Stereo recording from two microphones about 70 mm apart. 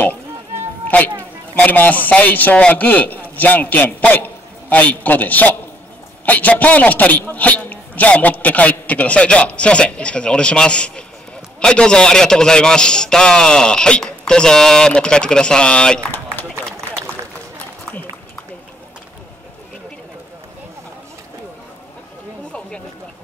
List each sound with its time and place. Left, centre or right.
0.8 s a man's voice: left
17.0 s run: centre